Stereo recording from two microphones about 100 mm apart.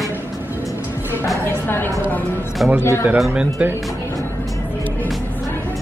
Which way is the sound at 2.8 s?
30° left (ahead or behind).